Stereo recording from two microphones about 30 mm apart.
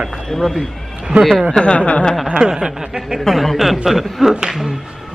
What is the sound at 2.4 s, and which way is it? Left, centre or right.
Speech, right.